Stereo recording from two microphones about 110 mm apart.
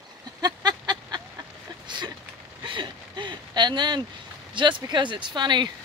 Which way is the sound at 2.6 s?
45° right (ahead or behind).